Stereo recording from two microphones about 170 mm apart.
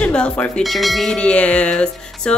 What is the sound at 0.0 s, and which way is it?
Speech, 5° left (ahead or behind).